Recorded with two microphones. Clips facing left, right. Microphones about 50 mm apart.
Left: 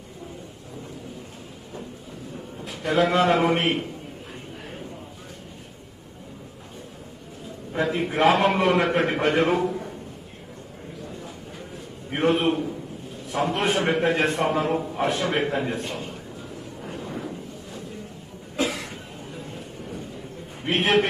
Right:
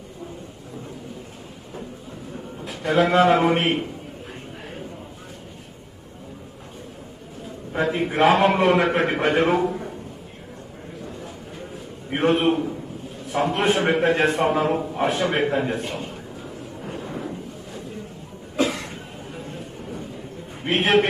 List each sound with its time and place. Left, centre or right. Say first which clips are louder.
2.6 s a man's voice: right 2 dB; centre
7.7 s a man's voice: right 2 dB; centre
12.1 s a man's voice: right 2 dB; centre
16.8 s a sound: right 2 dB; centre
18.6 s cough: right 3 dB; centre
19.3 s vehicle: right 3 dB; centre
20.6 s a man's voice: right 2 dB; centre